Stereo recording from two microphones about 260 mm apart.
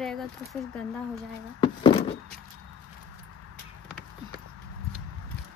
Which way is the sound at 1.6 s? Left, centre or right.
Centre.